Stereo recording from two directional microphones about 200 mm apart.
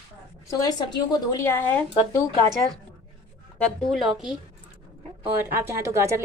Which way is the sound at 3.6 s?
Centre (ahead or behind).